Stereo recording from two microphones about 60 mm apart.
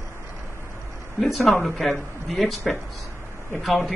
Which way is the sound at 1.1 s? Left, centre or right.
Centre.